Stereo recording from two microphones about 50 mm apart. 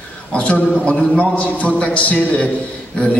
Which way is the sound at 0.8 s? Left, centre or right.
Left.